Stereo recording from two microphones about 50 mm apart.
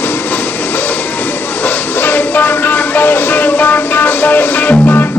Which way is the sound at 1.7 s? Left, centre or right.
Left.